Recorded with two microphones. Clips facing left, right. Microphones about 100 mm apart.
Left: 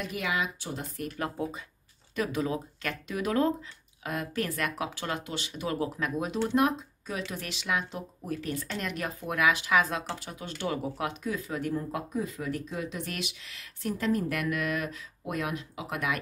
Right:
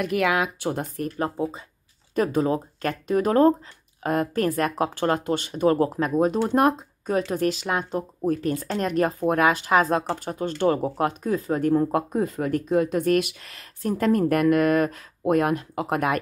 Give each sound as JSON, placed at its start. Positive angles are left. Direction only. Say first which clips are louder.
{"t": 0.0, "sound": "speech", "louder": "right 9 dB", "side_deg": -65}
{"t": 1.4, "sound": "speech", "louder": "right 5 dB", "side_deg": -25}
{"t": 2.1, "sound": "speech", "louder": "right 8 dB", "side_deg": -45}